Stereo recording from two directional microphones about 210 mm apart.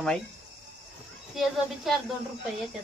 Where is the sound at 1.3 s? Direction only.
Centre (ahead or behind).